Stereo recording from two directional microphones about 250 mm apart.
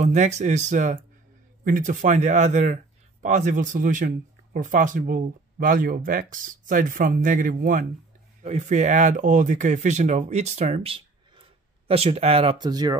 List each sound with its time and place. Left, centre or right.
0.0 s speech: right